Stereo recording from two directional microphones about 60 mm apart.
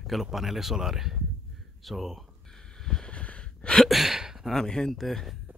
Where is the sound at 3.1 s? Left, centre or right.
Left.